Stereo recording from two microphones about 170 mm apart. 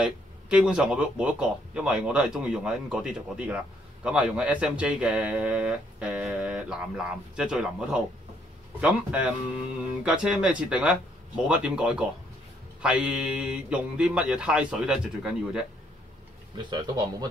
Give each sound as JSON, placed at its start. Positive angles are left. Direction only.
{"t": 0.0, "sound": "speech", "side_deg": -5}
{"t": 16.5, "sound": "speech", "side_deg": -25}